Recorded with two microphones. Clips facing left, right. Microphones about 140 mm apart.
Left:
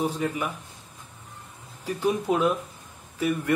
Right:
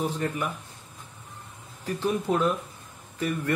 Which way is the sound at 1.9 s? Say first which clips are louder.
Left 2 dB; 10° left (ahead or behind).